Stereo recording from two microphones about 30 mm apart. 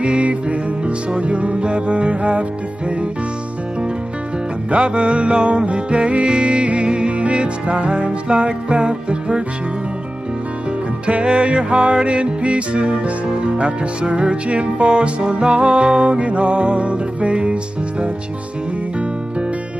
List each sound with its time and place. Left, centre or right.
0.0 s music: right
4.6 s music: right
11.1 s music: right